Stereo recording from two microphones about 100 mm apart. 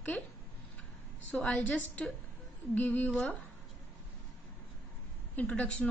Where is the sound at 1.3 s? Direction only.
10° left (ahead or behind).